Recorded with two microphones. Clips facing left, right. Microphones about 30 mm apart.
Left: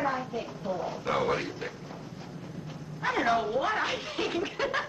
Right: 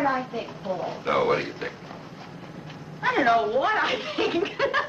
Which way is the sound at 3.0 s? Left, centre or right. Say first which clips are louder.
Right 6 dB; right.